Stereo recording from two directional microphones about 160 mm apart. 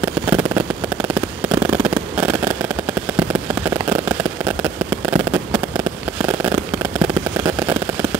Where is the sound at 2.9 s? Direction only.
15° right (ahead or behind).